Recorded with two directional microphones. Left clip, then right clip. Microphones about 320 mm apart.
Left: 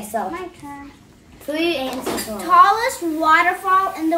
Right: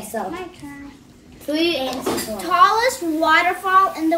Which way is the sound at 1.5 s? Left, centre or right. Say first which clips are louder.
Right 1 dB; centre.